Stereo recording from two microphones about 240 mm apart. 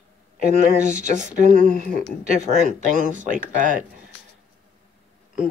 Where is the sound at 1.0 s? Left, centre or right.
Right.